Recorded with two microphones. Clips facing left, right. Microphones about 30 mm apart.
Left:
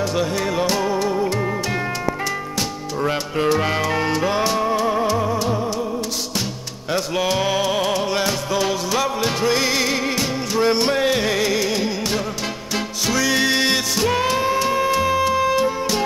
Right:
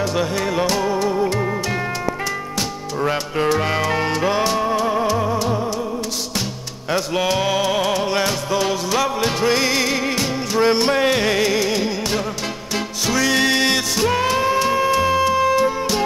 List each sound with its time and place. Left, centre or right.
0.0 s music: centre
3.0 s music: centre
7.6 s music: centre